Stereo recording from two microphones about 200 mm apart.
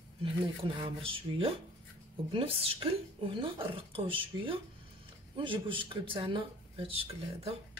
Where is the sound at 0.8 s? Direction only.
25° right (ahead or behind).